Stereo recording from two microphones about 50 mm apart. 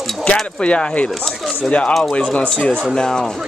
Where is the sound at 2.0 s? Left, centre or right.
Centre.